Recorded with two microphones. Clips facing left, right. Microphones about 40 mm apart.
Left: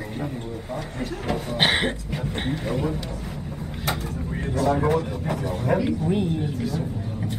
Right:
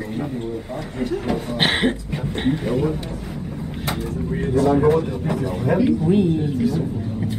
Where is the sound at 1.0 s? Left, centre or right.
Centre.